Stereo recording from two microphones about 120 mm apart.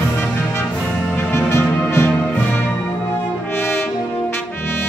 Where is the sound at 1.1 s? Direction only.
20° left (ahead or behind).